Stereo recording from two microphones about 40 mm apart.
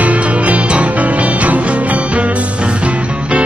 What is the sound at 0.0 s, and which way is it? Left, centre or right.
Music, right.